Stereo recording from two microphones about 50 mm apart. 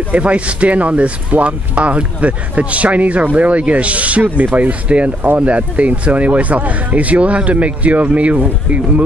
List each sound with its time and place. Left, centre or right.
0.1 s speech: right